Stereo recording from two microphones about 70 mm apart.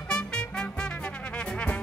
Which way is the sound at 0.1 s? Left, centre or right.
Centre.